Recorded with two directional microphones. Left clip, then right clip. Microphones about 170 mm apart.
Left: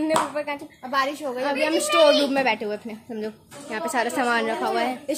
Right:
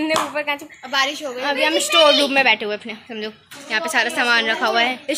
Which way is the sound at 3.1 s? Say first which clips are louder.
Even; 15° left (ahead or behind).